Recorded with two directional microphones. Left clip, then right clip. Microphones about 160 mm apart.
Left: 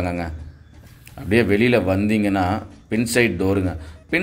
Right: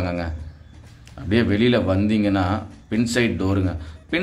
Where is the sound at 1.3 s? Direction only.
20° left (ahead or behind).